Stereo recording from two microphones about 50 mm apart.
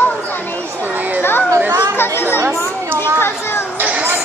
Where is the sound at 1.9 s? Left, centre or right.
Left.